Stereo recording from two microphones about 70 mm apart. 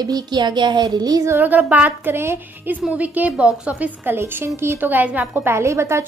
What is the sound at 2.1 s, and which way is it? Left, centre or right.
Speech, right.